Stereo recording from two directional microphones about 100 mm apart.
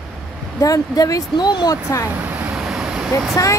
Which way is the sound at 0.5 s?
35° left (ahead or behind).